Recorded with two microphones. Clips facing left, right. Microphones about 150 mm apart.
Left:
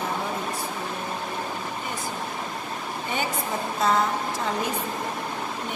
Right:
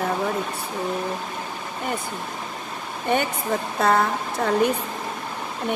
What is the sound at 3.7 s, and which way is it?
Speech, 60° right (ahead or behind).